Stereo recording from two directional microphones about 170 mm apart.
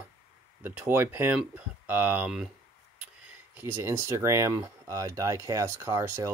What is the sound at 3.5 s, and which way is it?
Speech, 15° right (ahead or behind).